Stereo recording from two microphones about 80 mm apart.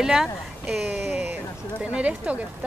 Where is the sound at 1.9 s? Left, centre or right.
Centre.